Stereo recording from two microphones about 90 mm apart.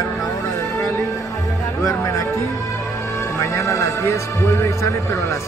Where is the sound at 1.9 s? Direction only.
35° left (ahead or behind).